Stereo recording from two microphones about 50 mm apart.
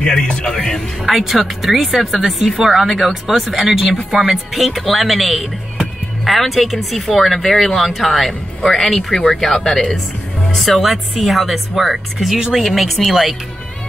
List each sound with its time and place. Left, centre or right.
0.0 s speech: centre
0.7 s speech: centre